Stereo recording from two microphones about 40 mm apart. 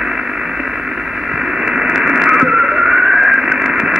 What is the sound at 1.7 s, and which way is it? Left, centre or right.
Radio, centre.